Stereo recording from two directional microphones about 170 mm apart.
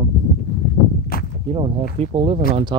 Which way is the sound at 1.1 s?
60° left (ahead or behind).